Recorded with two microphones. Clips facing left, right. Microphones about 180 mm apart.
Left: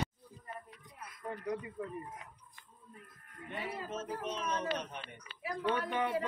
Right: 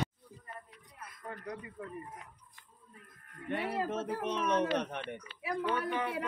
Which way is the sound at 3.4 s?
70° right (ahead or behind).